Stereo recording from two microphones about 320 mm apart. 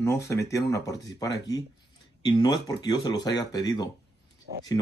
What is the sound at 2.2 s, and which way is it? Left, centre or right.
Speech, centre.